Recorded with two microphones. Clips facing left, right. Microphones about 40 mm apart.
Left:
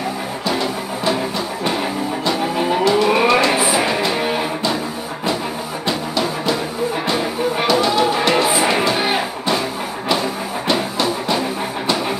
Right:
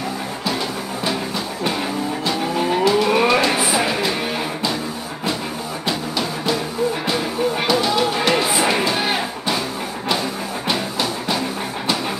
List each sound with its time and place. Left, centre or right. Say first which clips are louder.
2.5 s music: even; centre
5.9 s music: left 3 dB; centre
10.7 s music: left 4 dB; centre